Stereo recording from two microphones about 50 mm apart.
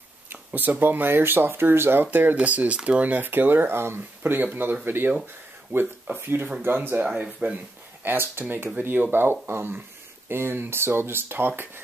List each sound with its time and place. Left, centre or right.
0.6 s speech: right
2.3 s speech: right
7.2 s speech: right
8.0 s speech: right